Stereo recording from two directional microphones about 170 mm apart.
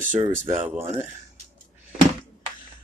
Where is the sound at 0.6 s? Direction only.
15° right (ahead or behind).